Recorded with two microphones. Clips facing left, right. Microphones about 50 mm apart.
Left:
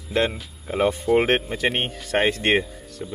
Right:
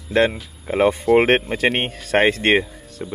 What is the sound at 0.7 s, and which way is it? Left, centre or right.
Speech, centre.